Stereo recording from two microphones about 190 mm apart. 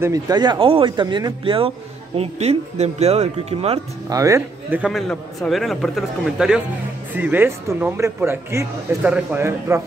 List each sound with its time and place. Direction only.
0.0 s a man's voice: 20° right (ahead or behind)
4.1 s a man's voice: 15° right (ahead or behind)